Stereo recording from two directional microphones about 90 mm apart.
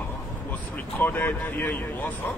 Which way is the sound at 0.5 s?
20° left (ahead or behind).